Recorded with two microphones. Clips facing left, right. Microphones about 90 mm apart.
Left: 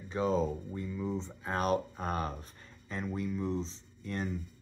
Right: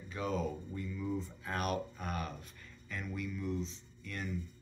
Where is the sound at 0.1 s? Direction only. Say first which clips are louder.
Left 6 dB; 30° left (ahead or behind).